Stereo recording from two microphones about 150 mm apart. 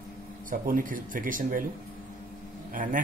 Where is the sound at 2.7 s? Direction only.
65° right (ahead or behind).